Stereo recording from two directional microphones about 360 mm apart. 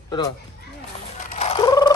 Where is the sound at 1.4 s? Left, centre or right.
Centre.